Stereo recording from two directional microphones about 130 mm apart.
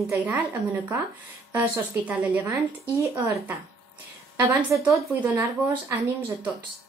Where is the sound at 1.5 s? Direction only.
15° right (ahead or behind).